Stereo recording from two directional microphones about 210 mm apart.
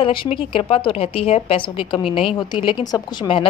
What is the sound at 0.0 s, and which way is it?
A woman's voice, 25° left (ahead or behind).